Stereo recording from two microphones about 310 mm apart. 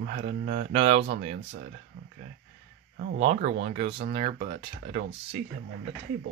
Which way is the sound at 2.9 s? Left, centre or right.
Right.